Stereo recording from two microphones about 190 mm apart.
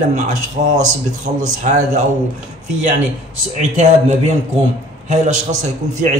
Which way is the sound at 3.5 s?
35° right (ahead or behind).